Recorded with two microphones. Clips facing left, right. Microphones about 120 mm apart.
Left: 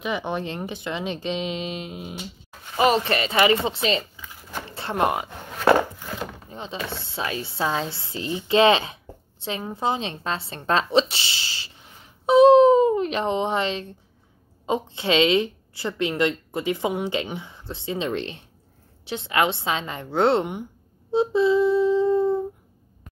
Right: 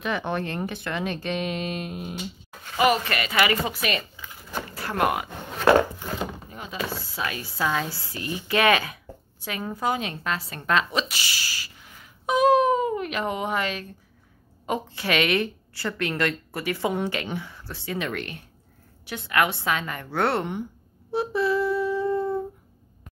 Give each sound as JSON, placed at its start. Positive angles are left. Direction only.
{"t": 0.0, "sound": "speech", "side_deg": 15}
{"t": 2.7, "sound": "a woman's voice", "side_deg": 30}
{"t": 4.5, "sound": "a sound", "side_deg": 25}
{"t": 6.5, "sound": "a woman's voice", "side_deg": 25}
{"t": 21.1, "sound": "humming", "side_deg": 20}